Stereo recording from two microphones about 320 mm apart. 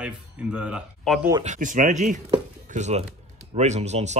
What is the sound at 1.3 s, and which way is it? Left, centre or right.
Speech, right.